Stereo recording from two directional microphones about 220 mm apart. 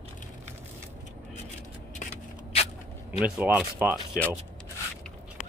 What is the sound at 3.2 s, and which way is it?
Speech, 5° right (ahead or behind).